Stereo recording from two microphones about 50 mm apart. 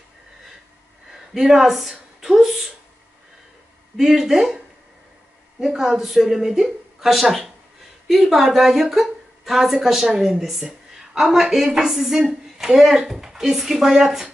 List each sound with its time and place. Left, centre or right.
1.1 s speech: centre
3.9 s a woman's voice: centre
5.6 s a woman's voice: centre